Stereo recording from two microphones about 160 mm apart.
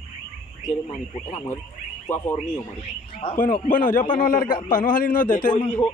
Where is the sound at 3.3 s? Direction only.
55° left (ahead or behind).